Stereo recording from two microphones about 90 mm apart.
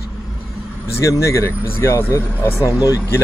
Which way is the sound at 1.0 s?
35° left (ahead or behind).